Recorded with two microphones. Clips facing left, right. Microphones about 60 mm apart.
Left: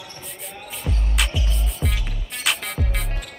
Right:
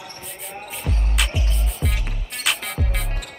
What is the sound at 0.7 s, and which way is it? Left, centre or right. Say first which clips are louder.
Music: left 1 dB; centre.